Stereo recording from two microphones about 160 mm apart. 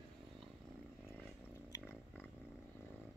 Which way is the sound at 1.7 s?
15° left (ahead or behind).